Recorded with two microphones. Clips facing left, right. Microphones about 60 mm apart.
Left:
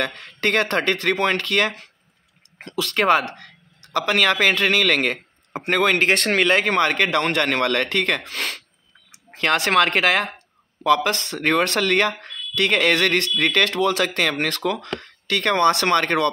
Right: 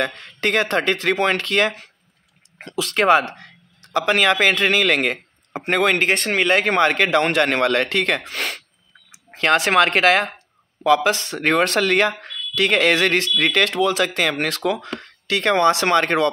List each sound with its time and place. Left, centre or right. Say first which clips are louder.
0.2 s speech: even; centre; by 3.0 s right
3.0 s speech: right 2 dB; centre
11.3 s speech: even; right
11.8 s speech: right 2 dB; centre